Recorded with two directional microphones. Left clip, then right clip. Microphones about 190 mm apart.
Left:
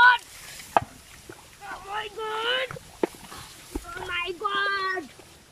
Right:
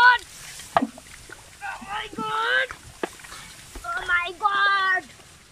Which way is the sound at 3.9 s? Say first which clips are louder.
Right 6 dB; 5° left (ahead or behind).